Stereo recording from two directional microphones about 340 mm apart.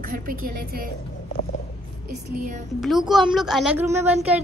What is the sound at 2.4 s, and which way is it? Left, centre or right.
Speech, right.